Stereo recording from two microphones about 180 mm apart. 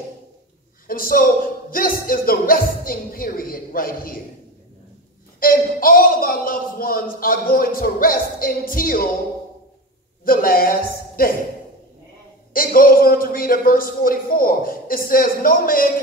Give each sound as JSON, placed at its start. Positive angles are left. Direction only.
{"t": 0.8, "sound": "a man's voice", "side_deg": 55}
{"t": 5.4, "sound": "a man's voice", "side_deg": 55}
{"t": 10.2, "sound": "a man's voice", "side_deg": 55}
{"t": 12.5, "sound": "a man's voice", "side_deg": 55}